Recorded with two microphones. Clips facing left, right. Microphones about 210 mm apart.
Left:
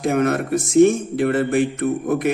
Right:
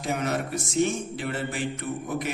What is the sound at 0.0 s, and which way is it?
A man's voice, 55° left (ahead or behind).